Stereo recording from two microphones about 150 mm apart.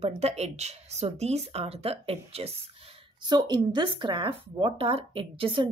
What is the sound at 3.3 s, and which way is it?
Speech, 30° right (ahead or behind).